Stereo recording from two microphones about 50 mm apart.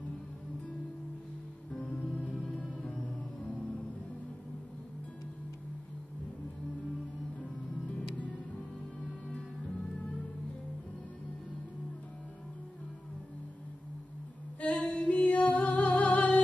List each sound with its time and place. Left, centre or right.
1.8 s music: centre
14.6 s music: left